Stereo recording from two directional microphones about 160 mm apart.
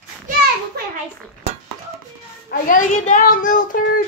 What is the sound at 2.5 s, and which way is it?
Speech, 55° left (ahead or behind).